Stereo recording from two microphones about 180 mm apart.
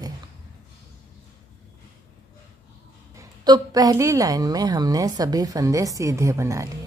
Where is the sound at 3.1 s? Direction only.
20° right (ahead or behind).